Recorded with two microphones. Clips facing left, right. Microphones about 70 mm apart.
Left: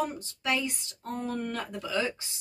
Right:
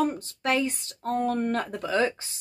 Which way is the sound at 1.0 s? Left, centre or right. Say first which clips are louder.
Right 8 dB; right.